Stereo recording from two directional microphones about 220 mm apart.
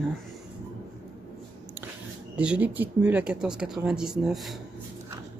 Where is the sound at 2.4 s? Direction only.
5° right (ahead or behind).